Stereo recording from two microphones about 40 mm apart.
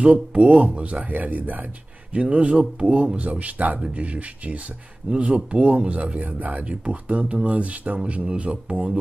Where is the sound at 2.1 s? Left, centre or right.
Right.